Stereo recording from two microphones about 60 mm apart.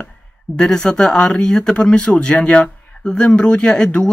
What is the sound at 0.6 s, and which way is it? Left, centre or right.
Speech, centre.